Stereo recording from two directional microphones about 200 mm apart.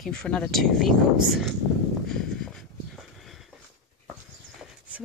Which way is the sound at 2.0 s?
5° left (ahead or behind).